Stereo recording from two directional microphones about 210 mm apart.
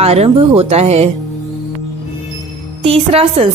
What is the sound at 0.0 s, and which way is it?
A woman's voice, 30° right (ahead or behind).